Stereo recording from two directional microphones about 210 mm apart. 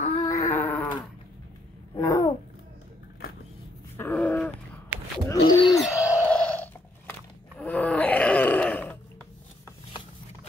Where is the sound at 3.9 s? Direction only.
10° left (ahead or behind).